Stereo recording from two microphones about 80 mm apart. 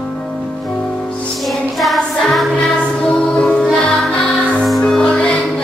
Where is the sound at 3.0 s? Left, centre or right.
Centre.